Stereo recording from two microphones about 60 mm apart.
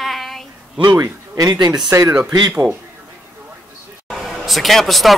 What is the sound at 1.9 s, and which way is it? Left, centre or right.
Speech, right.